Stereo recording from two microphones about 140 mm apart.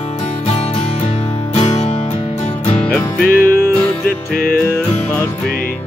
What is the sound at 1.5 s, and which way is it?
Music, 50° left (ahead or behind).